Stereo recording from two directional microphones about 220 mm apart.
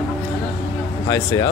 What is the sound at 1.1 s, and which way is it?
Speech, 15° left (ahead or behind).